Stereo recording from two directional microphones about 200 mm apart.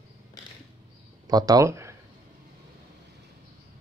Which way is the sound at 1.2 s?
20° right (ahead or behind).